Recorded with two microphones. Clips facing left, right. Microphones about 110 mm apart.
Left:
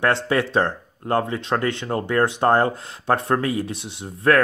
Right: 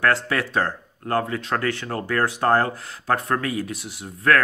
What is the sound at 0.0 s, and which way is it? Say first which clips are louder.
Speech: left 2 dB; 25° left (ahead or behind).